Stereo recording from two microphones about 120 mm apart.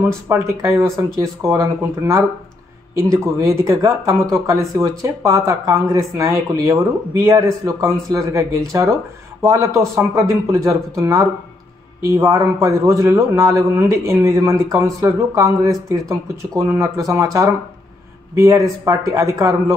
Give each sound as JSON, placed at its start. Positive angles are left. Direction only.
{"t": 0.3, "sound": "speech", "side_deg": -25}